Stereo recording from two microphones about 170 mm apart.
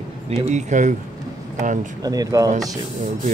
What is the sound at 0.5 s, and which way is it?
Speech, 45° right (ahead or behind).